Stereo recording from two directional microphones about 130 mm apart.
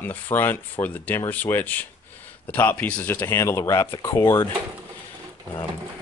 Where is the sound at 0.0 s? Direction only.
15° left (ahead or behind).